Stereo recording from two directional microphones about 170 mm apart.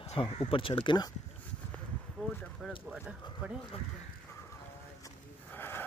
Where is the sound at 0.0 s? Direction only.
30° left (ahead or behind).